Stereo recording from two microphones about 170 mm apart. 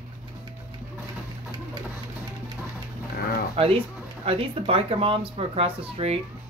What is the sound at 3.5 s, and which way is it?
Speech, 35° right (ahead or behind).